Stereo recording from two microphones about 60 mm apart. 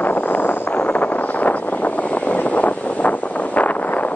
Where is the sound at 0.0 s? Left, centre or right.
Left.